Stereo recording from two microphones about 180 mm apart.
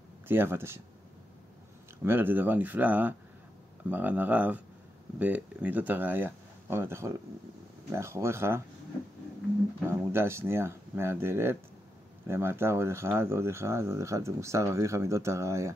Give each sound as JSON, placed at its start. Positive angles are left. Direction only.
{"t": 0.3, "sound": "speech", "side_deg": -10}
{"t": 2.0, "sound": "speech", "side_deg": -10}
{"t": 9.8, "sound": "speech", "side_deg": -15}